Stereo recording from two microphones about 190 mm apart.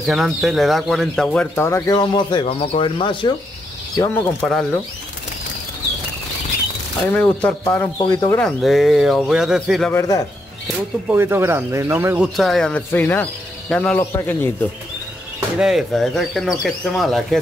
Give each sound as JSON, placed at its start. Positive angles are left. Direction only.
{"t": 0.0, "sound": "speech", "side_deg": 0}
{"t": 3.9, "sound": "speech", "side_deg": 15}
{"t": 7.0, "sound": "speech", "side_deg": 10}
{"t": 8.0, "sound": "speech", "side_deg": 25}
{"t": 8.4, "sound": "speech", "side_deg": 0}
{"t": 9.9, "sound": "speech", "side_deg": 15}
{"t": 11.1, "sound": "speech", "side_deg": -10}
{"t": 12.4, "sound": "speech", "side_deg": 0}
{"t": 15.6, "sound": "speech", "side_deg": 0}